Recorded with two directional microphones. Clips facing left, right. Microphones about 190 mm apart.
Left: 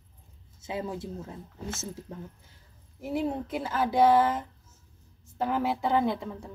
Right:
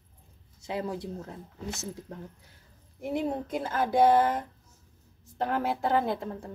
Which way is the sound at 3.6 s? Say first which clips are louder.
Even; 50° right (ahead or behind).